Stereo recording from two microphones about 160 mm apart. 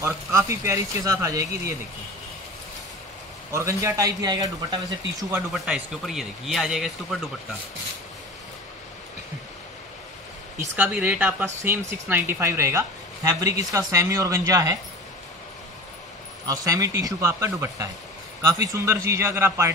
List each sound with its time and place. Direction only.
0.0 s a woman's voice: 15° right (ahead or behind)
3.5 s a woman's voice: 20° right (ahead or behind)
5.5 s speech: centre (ahead or behind)
10.8 s a man's voice: 10° right (ahead or behind)
16.4 s a woman's voice: 20° right (ahead or behind)